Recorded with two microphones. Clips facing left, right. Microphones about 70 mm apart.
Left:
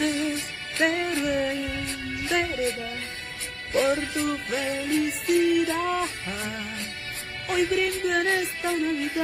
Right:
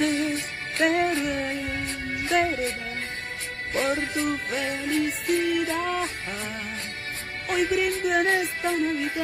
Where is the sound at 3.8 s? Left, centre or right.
Right.